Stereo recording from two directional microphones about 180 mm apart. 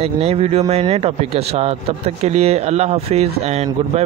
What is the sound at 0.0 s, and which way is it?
Speech, 35° right (ahead or behind).